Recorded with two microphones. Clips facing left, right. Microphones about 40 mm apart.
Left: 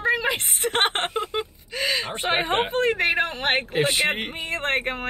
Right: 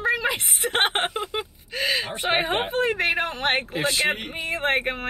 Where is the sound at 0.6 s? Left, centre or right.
Centre.